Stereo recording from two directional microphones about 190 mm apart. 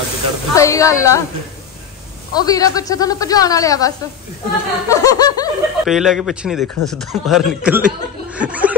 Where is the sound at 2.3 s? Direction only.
20° left (ahead or behind).